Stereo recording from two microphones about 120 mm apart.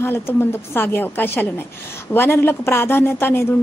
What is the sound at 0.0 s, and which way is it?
A woman's voice, 20° left (ahead or behind).